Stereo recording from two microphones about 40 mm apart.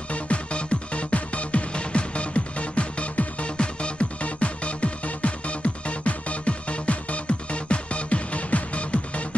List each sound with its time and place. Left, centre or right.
0.1 s music: left